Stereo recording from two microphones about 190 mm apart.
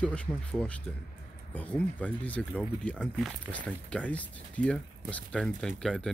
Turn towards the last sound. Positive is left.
turn(degrees=5)  # may be behind; listen again after turning